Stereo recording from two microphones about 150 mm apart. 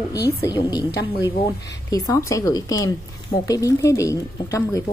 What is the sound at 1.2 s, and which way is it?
Speech, 35° left (ahead or behind).